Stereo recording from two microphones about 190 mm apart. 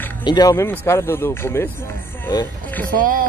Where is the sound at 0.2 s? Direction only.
20° left (ahead or behind).